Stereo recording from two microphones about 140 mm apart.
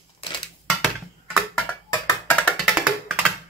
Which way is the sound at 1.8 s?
25° left (ahead or behind).